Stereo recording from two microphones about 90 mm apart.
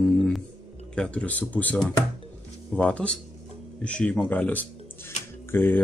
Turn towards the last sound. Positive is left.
turn(degrees=20)  # may be behind; listen again after turning